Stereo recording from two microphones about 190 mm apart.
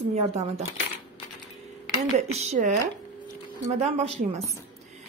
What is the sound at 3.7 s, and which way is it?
Speech, 35° right (ahead or behind).